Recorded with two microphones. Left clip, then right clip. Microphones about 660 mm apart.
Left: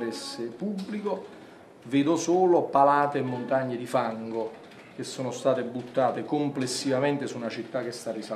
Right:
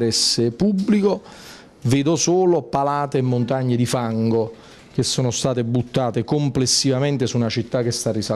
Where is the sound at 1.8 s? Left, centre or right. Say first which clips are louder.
Right 6 dB; right.